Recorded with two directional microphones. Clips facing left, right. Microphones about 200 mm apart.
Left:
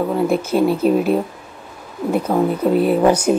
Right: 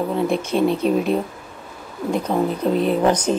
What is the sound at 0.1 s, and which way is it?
Speech, 5° left (ahead or behind).